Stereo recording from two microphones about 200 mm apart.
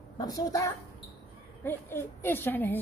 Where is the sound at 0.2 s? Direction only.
20° left (ahead or behind).